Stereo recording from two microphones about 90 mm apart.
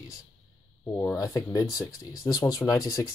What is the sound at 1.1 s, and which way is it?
Speech, 40° left (ahead or behind).